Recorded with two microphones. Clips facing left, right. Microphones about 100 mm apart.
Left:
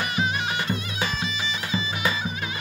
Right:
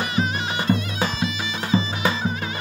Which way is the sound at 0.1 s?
40° right (ahead or behind).